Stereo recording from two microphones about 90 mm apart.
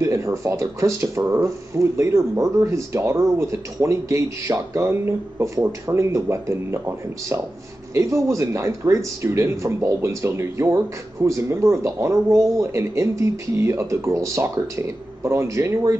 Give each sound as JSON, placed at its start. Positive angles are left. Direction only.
{"t": 0.0, "sound": "speech", "side_deg": -30}